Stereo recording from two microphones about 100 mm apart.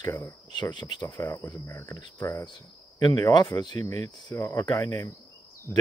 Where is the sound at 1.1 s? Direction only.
25° left (ahead or behind).